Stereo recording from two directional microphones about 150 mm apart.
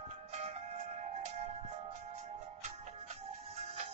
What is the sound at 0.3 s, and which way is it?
Music, 45° right (ahead or behind).